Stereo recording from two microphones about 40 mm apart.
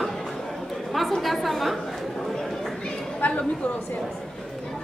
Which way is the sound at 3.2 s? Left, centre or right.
Left.